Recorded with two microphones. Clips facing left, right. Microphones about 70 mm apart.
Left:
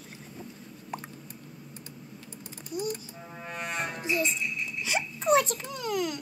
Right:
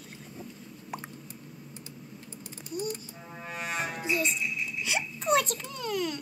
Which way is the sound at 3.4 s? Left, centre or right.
Centre.